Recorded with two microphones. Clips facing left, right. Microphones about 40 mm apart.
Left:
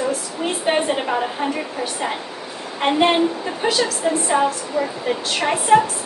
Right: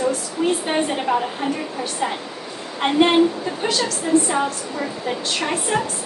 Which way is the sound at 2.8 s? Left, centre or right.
Centre.